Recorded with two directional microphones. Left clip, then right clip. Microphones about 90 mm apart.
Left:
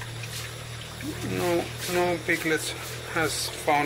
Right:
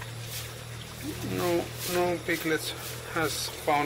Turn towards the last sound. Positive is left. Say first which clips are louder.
# left 3 dB
turn(degrees=0)  # may be behind; listen again after turning